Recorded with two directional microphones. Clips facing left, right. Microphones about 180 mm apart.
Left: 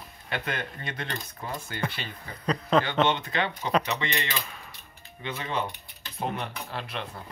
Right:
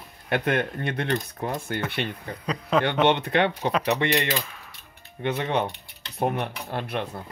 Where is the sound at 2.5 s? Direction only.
5° right (ahead or behind).